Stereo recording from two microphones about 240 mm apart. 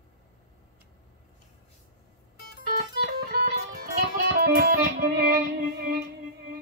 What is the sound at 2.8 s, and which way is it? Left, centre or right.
Music, right.